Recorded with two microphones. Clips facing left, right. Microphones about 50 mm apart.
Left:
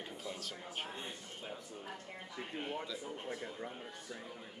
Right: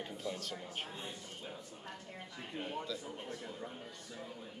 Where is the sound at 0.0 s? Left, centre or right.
Centre.